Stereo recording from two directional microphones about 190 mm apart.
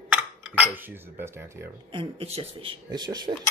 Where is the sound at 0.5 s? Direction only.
10° right (ahead or behind).